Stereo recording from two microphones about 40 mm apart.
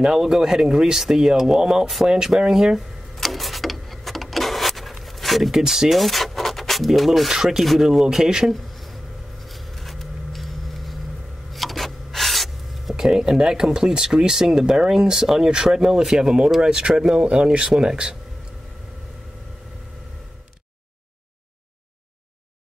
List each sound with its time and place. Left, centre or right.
0.0 s speech: centre
3.2 s printer: centre
5.0 s a sound: centre
5.5 s speech: centre
5.9 s vehicle: centre
6.9 s speech: centre
8.7 s a sound: centre
12.9 s speech: centre
16.2 s speech: centre